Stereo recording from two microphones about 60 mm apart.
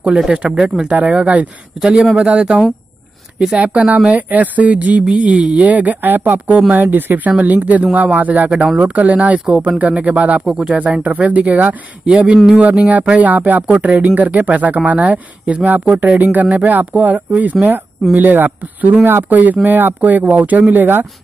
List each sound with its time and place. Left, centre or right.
0.3 s speech: centre
1.8 s a man's voice: centre
2.2 s speech: centre
10.4 s speech: centre; by 21.1 s right